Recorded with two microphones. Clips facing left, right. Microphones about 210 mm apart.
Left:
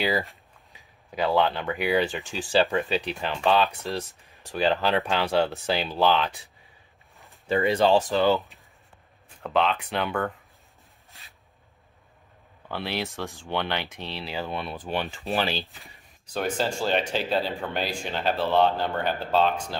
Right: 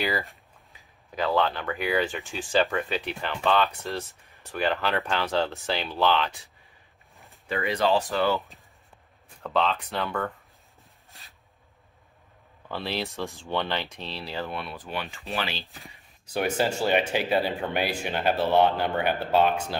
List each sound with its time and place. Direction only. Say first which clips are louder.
0.7 s speech: left 2 dB; 15° left (ahead or behind)
7.4 s speech: left 4 dB; 30° left (ahead or behind)
9.5 s speech: left 2 dB; 5° left (ahead or behind)
12.6 s speech: even; centre (ahead or behind)
14.9 s speech: left 6 dB; 40° left (ahead or behind)
15.6 s speech: right 2 dB; centre (ahead or behind)